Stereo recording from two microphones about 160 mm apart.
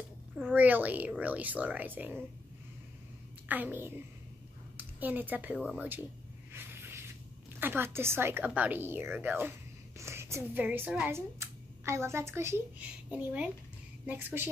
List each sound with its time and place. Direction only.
0.6 s a woman's voice: 10° right (ahead or behind)
3.4 s a woman's voice: 10° right (ahead or behind)
6.5 s a sound: 15° right (ahead or behind)
7.6 s a woman's voice: 15° right (ahead or behind)